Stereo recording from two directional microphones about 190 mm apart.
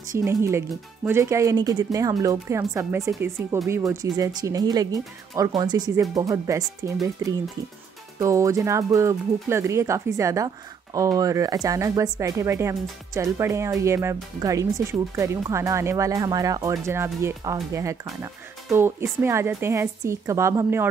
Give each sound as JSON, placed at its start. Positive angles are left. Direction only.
{"t": 0.1, "sound": "speech", "side_deg": -15}